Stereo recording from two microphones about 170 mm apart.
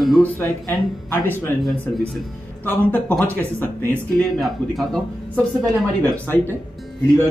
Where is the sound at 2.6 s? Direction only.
10° left (ahead or behind).